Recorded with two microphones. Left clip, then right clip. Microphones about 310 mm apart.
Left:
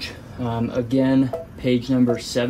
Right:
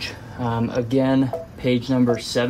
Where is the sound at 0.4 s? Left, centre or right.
Centre.